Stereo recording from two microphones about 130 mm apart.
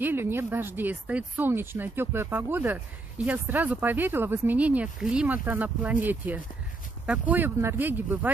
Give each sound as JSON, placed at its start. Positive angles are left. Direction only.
{"t": 0.0, "sound": "speech", "side_deg": -15}